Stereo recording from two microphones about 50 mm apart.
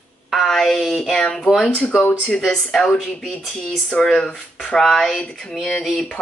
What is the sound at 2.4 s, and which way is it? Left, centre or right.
Speech, centre.